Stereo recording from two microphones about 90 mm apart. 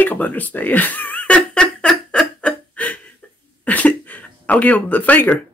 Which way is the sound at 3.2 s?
15° left (ahead or behind).